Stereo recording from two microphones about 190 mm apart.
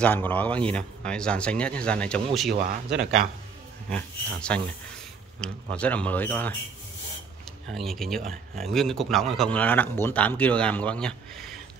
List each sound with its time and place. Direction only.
0.0 s speech: 10° left (ahead or behind)
2.5 s a man's voice: 50° right (ahead or behind)
3.9 s a man's voice: 5° left (ahead or behind)
7.7 s speech: centre (ahead or behind)